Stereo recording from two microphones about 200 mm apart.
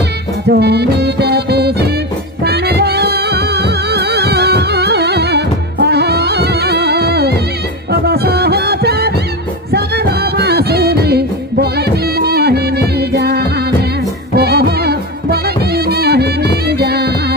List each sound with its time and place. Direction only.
0.5 s music: 55° right (ahead or behind)